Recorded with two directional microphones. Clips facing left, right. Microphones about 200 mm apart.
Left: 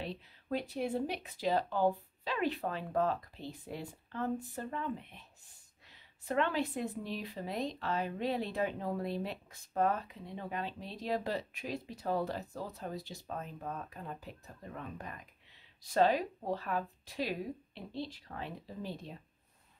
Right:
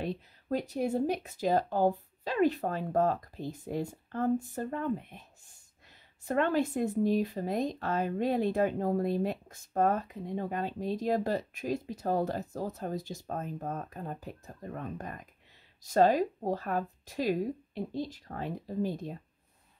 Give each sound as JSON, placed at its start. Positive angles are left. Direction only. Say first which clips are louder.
{"t": 0.0, "sound": "speech", "louder": "right 6 dB", "side_deg": -45}